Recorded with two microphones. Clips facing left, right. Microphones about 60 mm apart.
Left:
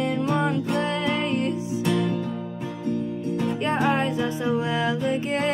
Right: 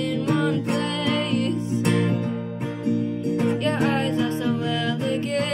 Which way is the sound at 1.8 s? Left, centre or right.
Right.